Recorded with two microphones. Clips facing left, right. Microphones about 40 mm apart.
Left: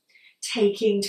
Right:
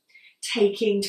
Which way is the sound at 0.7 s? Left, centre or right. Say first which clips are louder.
Left 1 dB; centre.